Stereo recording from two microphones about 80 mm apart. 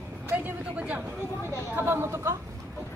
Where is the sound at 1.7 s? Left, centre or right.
Right.